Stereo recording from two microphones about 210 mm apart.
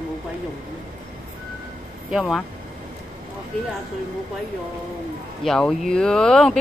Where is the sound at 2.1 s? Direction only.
Centre (ahead or behind).